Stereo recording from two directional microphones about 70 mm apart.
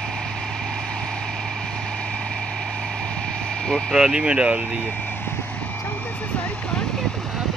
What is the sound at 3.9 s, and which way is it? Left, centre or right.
Speech, centre.